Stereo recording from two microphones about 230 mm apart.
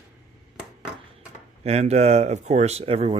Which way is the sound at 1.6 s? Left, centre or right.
Right.